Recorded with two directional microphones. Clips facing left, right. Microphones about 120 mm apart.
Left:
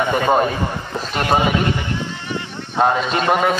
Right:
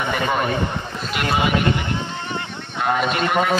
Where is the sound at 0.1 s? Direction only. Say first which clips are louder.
Left 5 dB; 35° left (ahead or behind).